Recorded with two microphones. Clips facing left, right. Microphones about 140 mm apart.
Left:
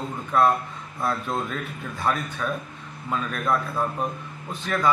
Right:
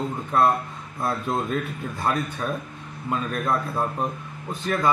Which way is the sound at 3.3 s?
25° right (ahead or behind).